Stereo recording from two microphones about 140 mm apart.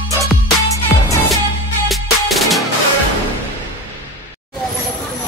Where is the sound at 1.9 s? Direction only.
Centre (ahead or behind).